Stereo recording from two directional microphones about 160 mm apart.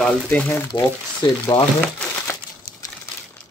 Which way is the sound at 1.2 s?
30° left (ahead or behind).